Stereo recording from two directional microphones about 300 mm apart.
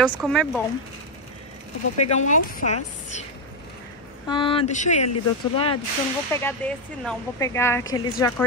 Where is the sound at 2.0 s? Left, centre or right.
Left.